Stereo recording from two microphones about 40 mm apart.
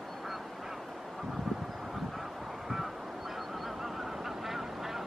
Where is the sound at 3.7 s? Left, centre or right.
Centre.